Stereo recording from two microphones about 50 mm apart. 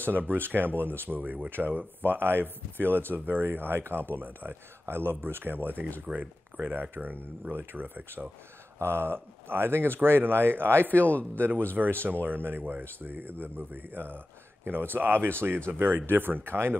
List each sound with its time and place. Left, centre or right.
0.0 s speech: right
8.8 s speech: right
10.9 s speech: left
11.3 s speech: right